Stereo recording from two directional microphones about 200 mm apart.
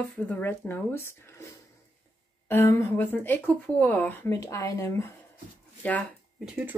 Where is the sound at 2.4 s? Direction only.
10° left (ahead or behind).